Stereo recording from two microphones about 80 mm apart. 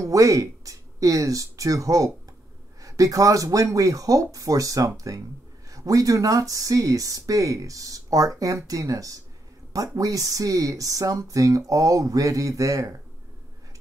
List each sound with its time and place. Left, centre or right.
0.0 s speech: right